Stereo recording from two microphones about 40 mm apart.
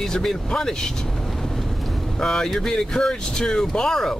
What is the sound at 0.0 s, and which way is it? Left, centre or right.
Speech, centre.